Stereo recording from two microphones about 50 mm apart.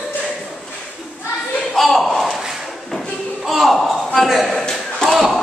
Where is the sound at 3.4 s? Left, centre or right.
Centre.